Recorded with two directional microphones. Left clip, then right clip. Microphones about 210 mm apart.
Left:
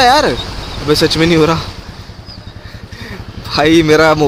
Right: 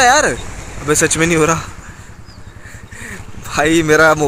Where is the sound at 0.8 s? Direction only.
5° right (ahead or behind).